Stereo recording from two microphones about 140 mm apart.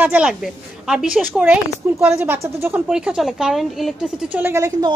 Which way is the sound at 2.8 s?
5° right (ahead or behind).